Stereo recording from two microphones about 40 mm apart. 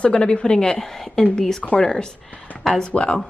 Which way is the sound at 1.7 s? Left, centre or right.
Left.